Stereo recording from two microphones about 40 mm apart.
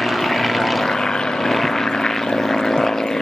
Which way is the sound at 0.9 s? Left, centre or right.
Centre.